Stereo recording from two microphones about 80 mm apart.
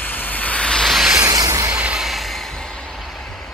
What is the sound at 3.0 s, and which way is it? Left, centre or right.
Vehicle, centre.